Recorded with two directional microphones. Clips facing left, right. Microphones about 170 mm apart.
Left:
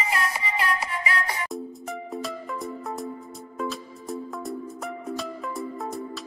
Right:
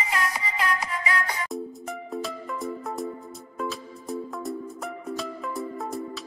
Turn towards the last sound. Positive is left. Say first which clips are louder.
# even
turn(degrees=0)  # may be behind; listen again after turning